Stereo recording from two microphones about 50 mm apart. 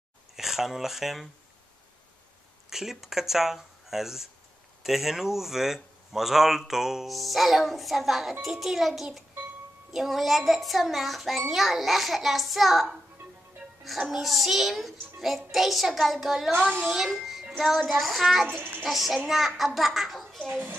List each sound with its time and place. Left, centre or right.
0.4 s a child's voice: centre
2.7 s a child's voice: centre
20.4 s a child's voice: right